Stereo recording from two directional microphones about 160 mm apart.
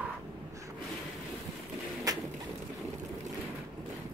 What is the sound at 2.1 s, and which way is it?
Bird, 20° right (ahead or behind).